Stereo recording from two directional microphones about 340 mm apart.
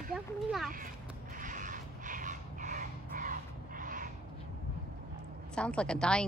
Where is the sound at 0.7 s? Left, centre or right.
Right.